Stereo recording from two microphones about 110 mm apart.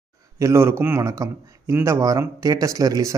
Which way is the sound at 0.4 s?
25° right (ahead or behind).